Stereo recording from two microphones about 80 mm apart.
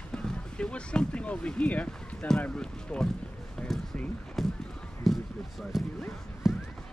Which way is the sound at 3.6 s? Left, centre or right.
Centre.